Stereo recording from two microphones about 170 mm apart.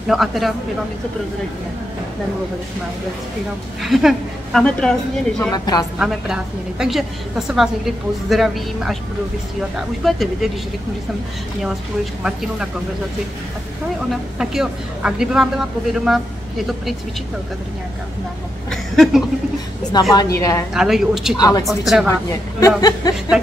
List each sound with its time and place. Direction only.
0.1 s a woman's voice: centre (ahead or behind)
3.8 s a woman's voice: centre (ahead or behind)
5.5 s speech: 25° left (ahead or behind)
5.9 s a woman's voice: 5° right (ahead or behind)
12.2 s a woman's voice: 5° right (ahead or behind)
14.4 s a woman's voice: 5° right (ahead or behind)
18.7 s speech: centre (ahead or behind)
19.9 s a woman's voice: 25° left (ahead or behind)
20.7 s a woman's voice: centre (ahead or behind)
21.4 s speech: 25° left (ahead or behind)
21.6 s a woman's voice: centre (ahead or behind)
22.0 s a woman's voice: 20° left (ahead or behind)